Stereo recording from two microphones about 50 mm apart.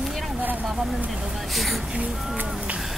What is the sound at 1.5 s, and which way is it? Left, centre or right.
Speech, centre.